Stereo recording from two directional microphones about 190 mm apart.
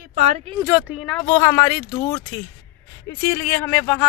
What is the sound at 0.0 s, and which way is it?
Speech, 40° right (ahead or behind).